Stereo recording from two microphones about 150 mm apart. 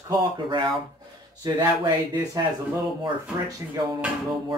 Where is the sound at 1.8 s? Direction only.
30° right (ahead or behind).